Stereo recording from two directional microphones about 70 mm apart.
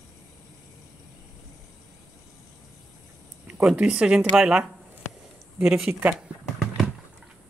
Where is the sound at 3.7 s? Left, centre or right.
Centre.